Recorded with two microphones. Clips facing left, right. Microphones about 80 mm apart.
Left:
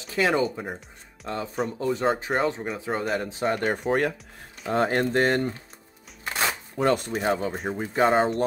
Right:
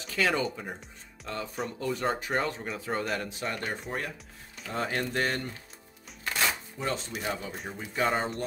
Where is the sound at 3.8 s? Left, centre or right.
Left.